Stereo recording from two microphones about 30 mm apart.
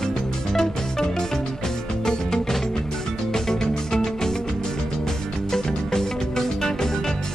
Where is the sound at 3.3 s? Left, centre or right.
Centre.